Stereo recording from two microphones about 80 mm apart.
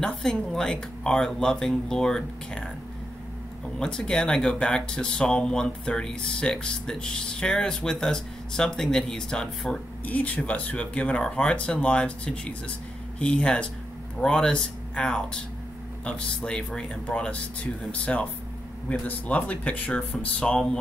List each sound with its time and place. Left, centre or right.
0.0 s speech: centre
3.8 s speech: centre
10.0 s speech: centre